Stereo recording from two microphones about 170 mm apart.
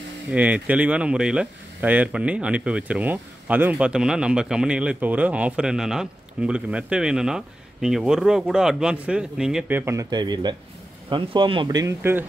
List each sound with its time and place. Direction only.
0.3 s speech: 10° right (ahead or behind)